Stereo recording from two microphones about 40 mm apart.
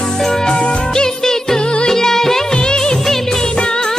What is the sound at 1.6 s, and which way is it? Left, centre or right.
Music, left.